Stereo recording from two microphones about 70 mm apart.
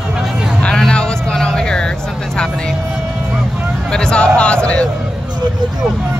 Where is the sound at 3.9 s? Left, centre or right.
Centre.